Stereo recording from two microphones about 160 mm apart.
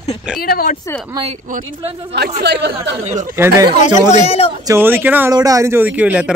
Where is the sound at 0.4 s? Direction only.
70° left (ahead or behind).